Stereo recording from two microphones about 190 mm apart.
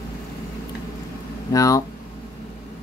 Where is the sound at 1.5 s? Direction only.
15° left (ahead or behind).